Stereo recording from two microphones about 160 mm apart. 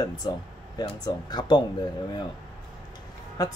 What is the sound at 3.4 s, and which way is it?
Speech, 20° left (ahead or behind).